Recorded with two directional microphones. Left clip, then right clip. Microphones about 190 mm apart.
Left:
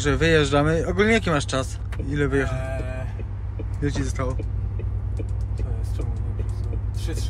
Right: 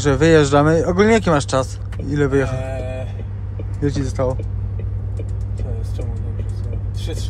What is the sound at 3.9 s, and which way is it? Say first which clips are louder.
Speech: right 6 dB; 25° right (ahead or behind).